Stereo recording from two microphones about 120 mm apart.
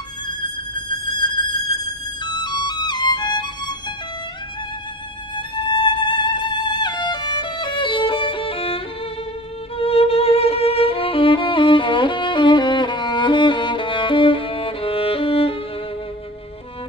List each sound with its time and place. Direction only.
2.2 s music: 35° left (ahead or behind)
5.6 s violin: 40° left (ahead or behind)